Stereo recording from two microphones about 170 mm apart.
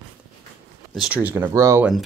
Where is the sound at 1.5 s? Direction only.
20° right (ahead or behind).